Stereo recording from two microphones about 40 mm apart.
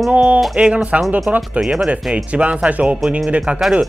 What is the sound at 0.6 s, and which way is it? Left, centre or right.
Speech, centre.